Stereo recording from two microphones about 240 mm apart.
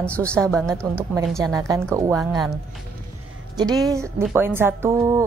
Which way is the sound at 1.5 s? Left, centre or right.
Centre.